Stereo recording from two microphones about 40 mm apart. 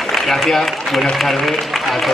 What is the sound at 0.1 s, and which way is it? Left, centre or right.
A man's voice, centre.